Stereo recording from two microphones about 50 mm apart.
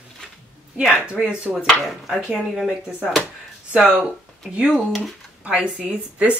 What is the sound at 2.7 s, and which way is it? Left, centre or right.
Speech, right.